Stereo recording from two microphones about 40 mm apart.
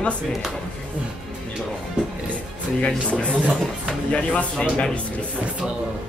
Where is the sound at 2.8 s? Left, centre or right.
Left.